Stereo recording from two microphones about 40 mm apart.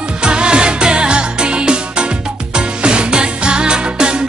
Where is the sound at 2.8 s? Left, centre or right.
Right.